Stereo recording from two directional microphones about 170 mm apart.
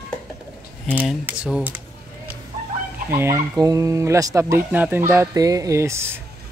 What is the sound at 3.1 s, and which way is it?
Speech, 15° right (ahead or behind).